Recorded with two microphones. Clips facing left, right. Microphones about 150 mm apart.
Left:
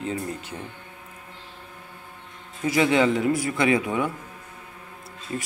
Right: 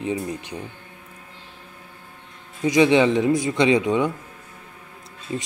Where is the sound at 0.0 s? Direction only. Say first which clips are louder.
Right 3 dB; 15° right (ahead or behind).